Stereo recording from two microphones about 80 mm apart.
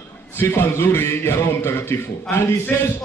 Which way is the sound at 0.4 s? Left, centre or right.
Left.